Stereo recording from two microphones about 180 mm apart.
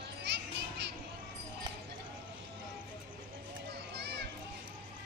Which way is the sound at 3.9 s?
70° right (ahead or behind).